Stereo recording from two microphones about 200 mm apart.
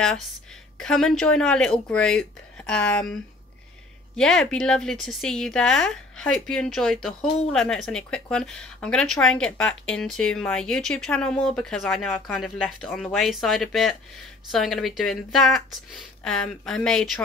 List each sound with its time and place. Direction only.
0.7 s speech: 5° left (ahead or behind)
4.2 s speech: 5° left (ahead or behind)